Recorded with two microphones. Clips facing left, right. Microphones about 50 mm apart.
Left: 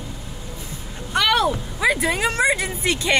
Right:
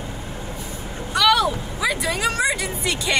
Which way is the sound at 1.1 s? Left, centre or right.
Left.